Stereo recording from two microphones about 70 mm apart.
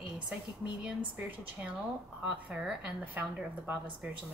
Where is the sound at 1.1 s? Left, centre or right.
Centre.